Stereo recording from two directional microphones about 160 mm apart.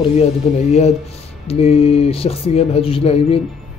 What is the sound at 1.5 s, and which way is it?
Speech, 40° left (ahead or behind).